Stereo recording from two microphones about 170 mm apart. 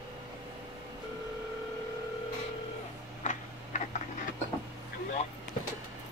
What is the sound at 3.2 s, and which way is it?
Tick-tock, 45° left (ahead or behind).